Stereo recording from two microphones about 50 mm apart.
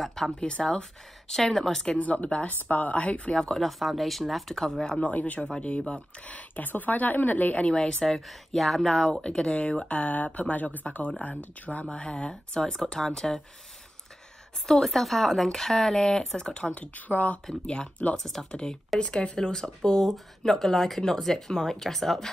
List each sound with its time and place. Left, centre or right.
0.0 s a sound: centre
0.4 s speech: centre
1.3 s speech: centre
1.9 s speech: left
3.3 s speech: centre
5.0 s speech: left
7.6 s speech: centre
9.2 s speech: centre
14.7 s speech: centre
16.7 s speech: left
18.1 s speech: centre
18.5 s speech: centre